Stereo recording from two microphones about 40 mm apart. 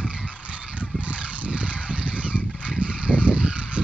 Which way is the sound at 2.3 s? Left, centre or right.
Right.